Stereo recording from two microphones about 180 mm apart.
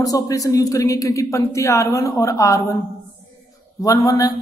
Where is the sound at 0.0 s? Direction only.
20° left (ahead or behind).